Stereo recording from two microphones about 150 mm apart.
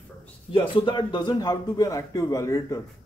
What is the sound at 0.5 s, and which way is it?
A man's voice, 35° left (ahead or behind).